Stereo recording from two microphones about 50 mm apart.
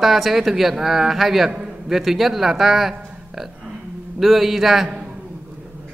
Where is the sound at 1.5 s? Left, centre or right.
Centre.